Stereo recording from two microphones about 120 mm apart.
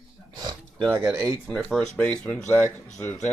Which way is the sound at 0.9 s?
25° right (ahead or behind).